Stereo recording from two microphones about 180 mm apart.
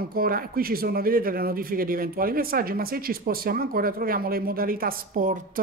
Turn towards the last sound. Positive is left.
turn(degrees=-50)  # may be behind; listen again after turning